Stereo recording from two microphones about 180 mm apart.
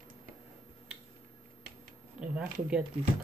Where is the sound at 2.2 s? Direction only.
5° right (ahead or behind).